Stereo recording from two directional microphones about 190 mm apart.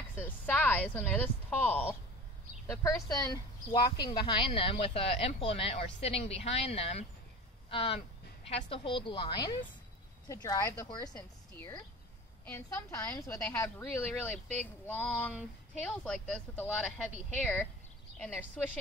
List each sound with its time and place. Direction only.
0.2 s a woman's voice: 10° left (ahead or behind)